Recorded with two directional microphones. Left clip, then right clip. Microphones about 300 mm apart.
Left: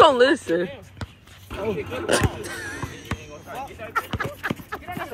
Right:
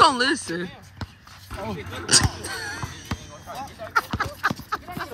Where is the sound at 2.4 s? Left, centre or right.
Right.